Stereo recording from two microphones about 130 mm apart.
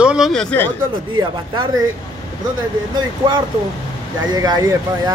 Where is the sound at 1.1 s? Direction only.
40° right (ahead or behind).